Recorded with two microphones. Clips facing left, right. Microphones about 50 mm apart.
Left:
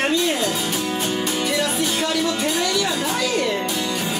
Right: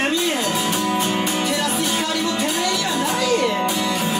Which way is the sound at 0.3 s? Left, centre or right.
Right.